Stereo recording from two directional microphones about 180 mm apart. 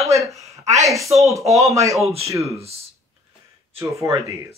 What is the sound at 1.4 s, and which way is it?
Speech, 15° right (ahead or behind).